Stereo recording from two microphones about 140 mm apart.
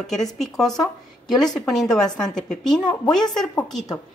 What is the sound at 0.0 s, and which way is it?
A woman's voice, centre (ahead or behind).